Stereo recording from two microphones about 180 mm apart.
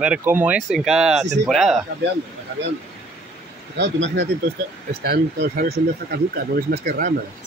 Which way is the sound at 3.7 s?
80° right.